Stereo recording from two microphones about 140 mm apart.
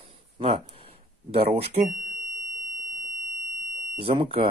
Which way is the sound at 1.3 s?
45° right (ahead or behind).